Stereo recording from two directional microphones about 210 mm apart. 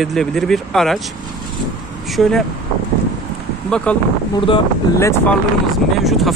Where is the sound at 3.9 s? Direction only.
5° left (ahead or behind).